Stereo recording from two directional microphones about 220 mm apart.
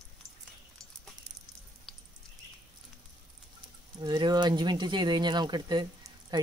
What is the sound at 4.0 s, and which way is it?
Speech, 20° right (ahead or behind).